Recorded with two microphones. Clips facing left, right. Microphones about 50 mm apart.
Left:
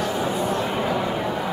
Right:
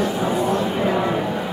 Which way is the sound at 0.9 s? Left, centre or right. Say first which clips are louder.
Right 3 dB; right.